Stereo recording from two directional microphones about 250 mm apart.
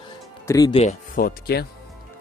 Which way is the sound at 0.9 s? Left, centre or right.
Left.